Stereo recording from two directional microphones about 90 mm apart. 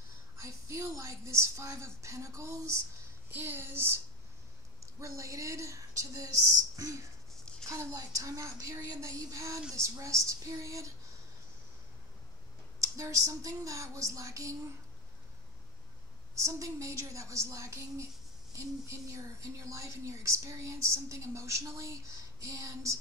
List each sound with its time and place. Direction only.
0.4 s speech: 35° right (ahead or behind)
3.3 s speech: 25° right (ahead or behind)
5.0 s speech: 35° right (ahead or behind)
7.6 s speech: 35° right (ahead or behind)
12.8 s speech: 35° right (ahead or behind)
16.3 s speech: 35° right (ahead or behind)